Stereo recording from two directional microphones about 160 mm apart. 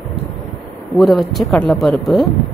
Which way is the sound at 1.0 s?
Centre (ahead or behind).